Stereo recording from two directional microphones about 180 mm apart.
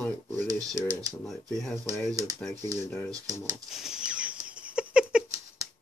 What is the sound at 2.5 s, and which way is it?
Speech, 45° right (ahead or behind).